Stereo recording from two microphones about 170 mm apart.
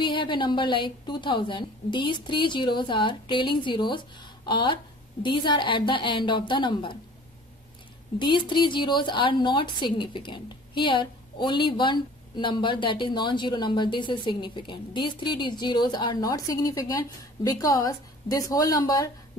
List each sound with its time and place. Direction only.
0.0 s a woman's voice: 30° left (ahead or behind)
8.2 s a woman's voice: 25° left (ahead or behind)